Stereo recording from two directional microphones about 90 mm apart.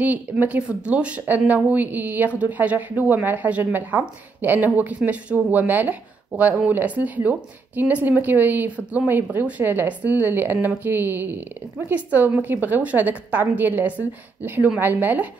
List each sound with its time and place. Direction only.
0.0 s speech: 20° right (ahead or behind)